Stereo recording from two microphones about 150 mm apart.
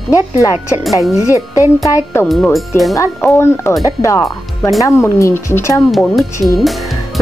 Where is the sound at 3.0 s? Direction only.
15° left (ahead or behind).